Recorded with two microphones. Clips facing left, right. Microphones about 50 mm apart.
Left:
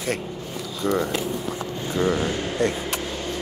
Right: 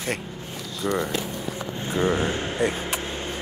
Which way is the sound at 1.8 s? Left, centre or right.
Right.